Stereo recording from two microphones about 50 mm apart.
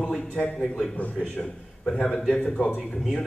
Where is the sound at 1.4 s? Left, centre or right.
Centre.